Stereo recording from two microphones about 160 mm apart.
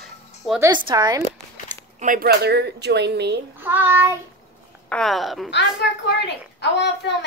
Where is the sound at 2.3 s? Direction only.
90° right.